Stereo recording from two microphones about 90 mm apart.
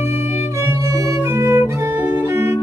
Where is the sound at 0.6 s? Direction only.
35° right (ahead or behind).